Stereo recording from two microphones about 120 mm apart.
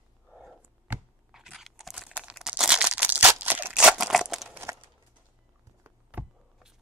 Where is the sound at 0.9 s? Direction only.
15° right (ahead or behind).